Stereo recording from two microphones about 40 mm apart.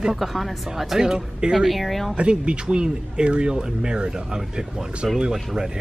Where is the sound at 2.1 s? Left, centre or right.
Right.